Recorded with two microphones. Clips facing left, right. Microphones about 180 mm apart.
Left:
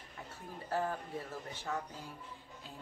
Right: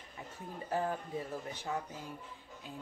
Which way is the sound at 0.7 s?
15° right (ahead or behind).